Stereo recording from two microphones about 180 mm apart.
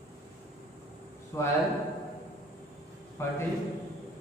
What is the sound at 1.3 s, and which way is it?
Speech, 15° left (ahead or behind).